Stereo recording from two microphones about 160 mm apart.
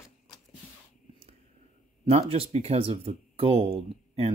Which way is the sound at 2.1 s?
40° right (ahead or behind).